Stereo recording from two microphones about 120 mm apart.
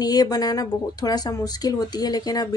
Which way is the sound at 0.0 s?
35° left (ahead or behind).